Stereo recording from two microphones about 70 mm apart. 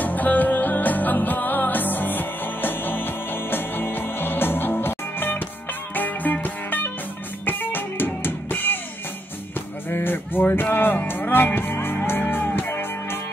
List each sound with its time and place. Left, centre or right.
0.0 s music: left
9.8 s music: left